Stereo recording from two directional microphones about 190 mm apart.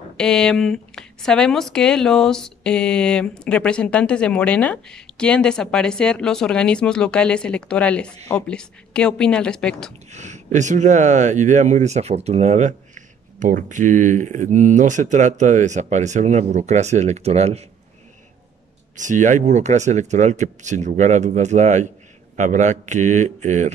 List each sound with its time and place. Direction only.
0.2 s speech: 5° left (ahead or behind)
10.1 s speech: 40° right (ahead or behind)
18.9 s speech: 40° right (ahead or behind)